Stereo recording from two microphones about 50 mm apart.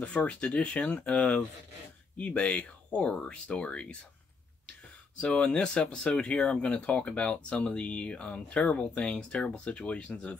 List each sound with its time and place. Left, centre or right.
0.0 s speech: left
5.2 s speech: left
9.1 s speech: centre